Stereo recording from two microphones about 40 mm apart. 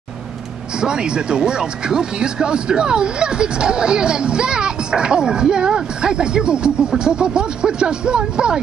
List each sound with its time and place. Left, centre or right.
0.7 s speech: right